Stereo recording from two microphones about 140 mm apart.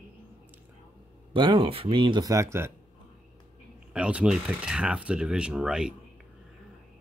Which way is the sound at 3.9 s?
10° right (ahead or behind).